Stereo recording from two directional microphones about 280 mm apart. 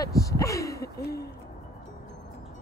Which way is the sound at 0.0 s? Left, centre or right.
Centre.